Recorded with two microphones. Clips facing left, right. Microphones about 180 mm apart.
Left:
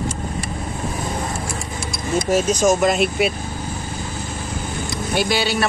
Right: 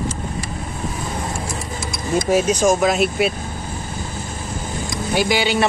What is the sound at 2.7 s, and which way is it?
Speech, centre (ahead or behind).